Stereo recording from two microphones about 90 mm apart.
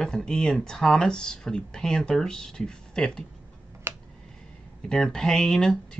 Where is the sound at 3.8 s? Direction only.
25° right (ahead or behind).